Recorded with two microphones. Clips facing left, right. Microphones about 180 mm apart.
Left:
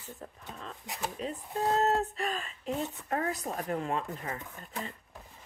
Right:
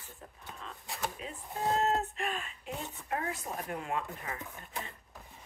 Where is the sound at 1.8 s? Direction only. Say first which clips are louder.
Left 3 dB; 35° left (ahead or behind).